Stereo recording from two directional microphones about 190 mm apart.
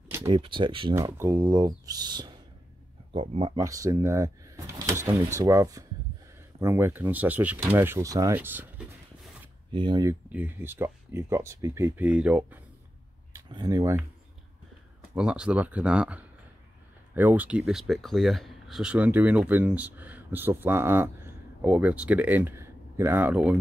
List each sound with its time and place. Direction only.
0.1 s speech: 20° right (ahead or behind)
0.9 s speech: 15° right (ahead or behind)
3.5 s speech: 15° right (ahead or behind)
9.7 s speech: 25° right (ahead or behind)
10.3 s speech: 10° right (ahead or behind)
13.3 s speech: 20° right (ahead or behind)
15.1 s speech: 5° right (ahead or behind)